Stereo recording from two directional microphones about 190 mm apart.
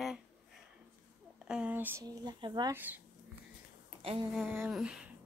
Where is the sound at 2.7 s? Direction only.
10° right (ahead or behind).